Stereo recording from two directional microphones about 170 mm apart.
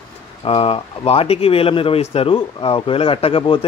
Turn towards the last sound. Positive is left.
turn(degrees=35)  # may be behind; listen again after turning